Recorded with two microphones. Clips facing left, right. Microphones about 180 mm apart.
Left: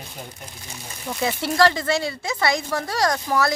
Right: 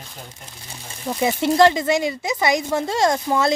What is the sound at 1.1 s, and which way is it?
Speech, 15° right (ahead or behind).